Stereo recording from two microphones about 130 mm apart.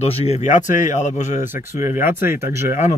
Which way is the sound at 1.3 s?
20° right (ahead or behind).